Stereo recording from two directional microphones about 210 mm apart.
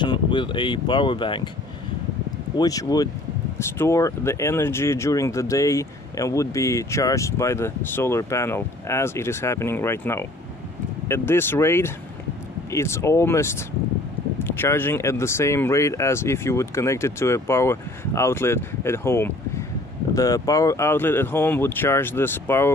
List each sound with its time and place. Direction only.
0.0 s speech: 20° left (ahead or behind)
2.5 s speech: 15° left (ahead or behind)